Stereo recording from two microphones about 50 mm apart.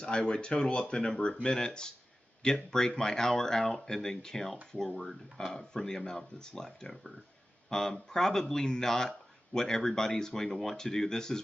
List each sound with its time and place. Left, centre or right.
0.0 s speech: centre